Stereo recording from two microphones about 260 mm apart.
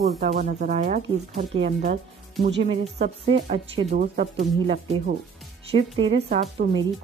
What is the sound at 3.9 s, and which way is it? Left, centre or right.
Speech, right.